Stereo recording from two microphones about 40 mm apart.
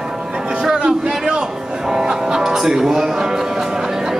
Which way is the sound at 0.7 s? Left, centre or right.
Right.